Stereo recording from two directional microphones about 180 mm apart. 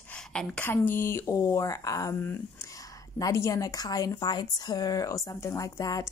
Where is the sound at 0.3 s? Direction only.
5° left (ahead or behind).